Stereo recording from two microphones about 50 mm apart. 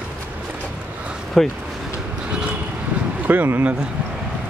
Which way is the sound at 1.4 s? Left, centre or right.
Centre.